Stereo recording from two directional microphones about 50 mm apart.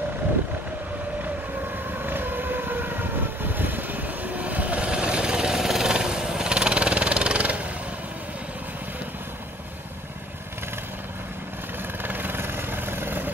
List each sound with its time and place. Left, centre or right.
2.0 s vehicle: right
12.0 s vehicle: right